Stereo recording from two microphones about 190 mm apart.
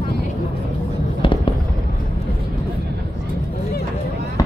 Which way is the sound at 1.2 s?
25° left (ahead or behind).